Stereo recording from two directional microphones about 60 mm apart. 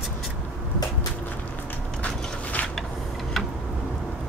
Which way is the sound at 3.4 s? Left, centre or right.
Centre.